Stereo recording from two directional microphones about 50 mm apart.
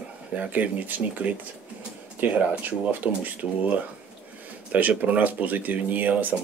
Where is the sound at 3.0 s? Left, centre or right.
Right.